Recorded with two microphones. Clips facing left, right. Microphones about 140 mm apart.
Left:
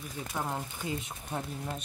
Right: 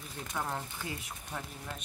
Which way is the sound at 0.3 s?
15° left (ahead or behind).